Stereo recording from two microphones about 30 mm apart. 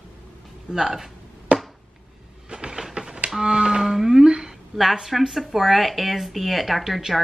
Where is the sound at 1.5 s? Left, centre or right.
Right.